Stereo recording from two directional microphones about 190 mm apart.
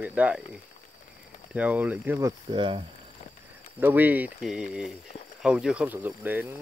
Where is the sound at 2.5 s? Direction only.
25° right (ahead or behind).